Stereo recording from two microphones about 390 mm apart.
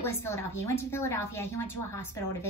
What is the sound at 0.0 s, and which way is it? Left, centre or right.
A woman's voice, centre.